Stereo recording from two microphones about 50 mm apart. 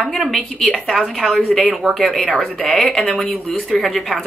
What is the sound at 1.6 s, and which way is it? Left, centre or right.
Speech, centre.